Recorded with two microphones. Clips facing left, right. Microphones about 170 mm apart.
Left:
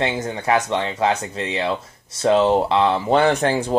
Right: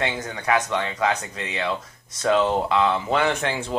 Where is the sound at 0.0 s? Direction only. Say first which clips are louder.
Left 4 dB; 25° left (ahead or behind).